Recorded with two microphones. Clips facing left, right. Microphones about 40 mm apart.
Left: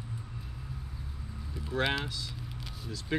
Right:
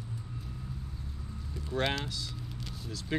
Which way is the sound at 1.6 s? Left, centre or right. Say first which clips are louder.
Left 1 dB; centre.